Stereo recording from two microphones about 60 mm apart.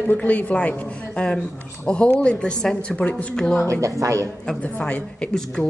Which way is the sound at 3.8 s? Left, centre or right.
Right.